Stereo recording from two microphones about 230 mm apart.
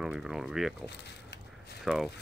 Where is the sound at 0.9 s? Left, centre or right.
Left.